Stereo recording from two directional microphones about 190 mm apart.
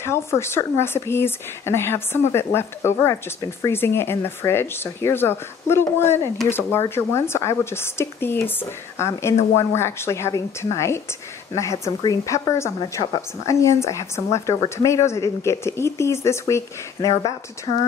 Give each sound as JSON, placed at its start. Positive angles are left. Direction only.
{"t": 0.0, "sound": "speech", "side_deg": 15}